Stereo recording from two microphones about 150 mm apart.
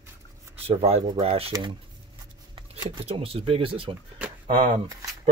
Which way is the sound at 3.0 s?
40° right (ahead or behind).